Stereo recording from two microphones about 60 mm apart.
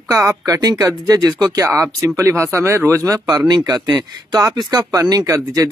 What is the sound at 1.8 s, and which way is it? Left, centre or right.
Speech, right.